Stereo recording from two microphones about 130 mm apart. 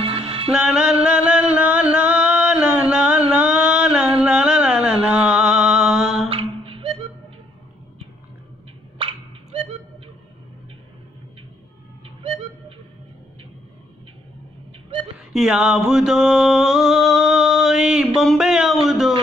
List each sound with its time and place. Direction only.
0.5 s music: 5° right (ahead or behind)
6.3 s music: 45° right (ahead or behind)
8.9 s a sound: 45° right (ahead or behind)
12.2 s music: 45° right (ahead or behind)
15.3 s music: 5° right (ahead or behind)